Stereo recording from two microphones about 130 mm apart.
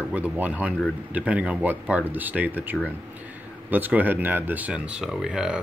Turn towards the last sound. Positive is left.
turn(degrees=-5)  # may be behind; listen again after turning